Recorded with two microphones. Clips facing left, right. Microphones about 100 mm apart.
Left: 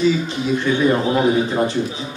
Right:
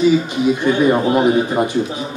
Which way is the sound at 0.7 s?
20° right (ahead or behind).